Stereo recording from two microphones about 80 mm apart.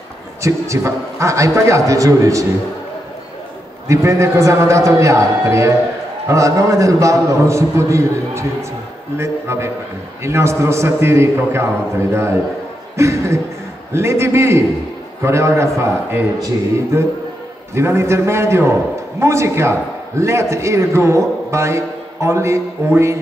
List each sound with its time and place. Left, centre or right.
0.4 s a man's voice: right
3.8 s a man's voice: right